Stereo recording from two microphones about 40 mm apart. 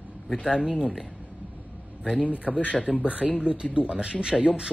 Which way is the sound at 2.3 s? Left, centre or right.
Right.